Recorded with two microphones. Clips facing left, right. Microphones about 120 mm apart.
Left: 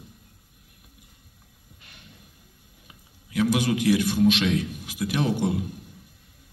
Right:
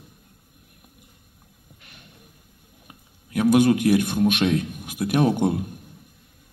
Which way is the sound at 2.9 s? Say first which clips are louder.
Right 5 dB; 50° right (ahead or behind).